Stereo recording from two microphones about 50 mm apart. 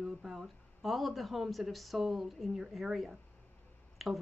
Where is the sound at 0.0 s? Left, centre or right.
Centre.